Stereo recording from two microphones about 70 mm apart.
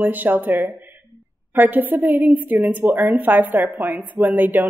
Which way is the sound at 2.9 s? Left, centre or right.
Right.